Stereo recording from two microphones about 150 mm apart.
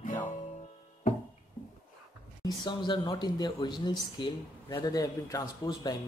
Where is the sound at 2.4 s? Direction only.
30° left (ahead or behind).